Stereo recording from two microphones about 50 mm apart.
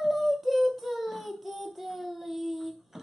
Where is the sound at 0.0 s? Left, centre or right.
Centre.